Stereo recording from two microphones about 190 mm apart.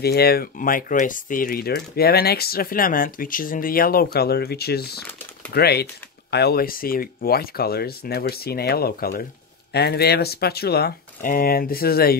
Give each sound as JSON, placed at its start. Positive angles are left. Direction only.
{"t": 0.0, "sound": "speech", "side_deg": 55}